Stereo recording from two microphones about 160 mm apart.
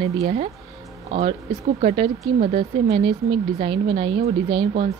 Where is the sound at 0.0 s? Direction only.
40° right (ahead or behind).